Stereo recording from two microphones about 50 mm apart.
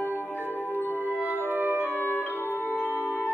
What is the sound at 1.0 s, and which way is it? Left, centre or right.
Music, right.